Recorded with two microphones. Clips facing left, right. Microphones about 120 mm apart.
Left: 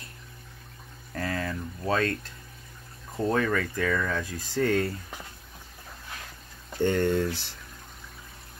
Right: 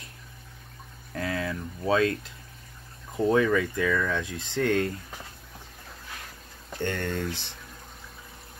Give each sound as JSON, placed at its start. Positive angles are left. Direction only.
{"t": 1.1, "sound": "speech", "side_deg": 0}
{"t": 3.2, "sound": "speech", "side_deg": -5}
{"t": 6.8, "sound": "speech", "side_deg": 10}